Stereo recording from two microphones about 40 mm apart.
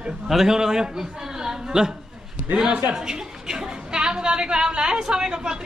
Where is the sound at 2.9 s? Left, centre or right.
Centre.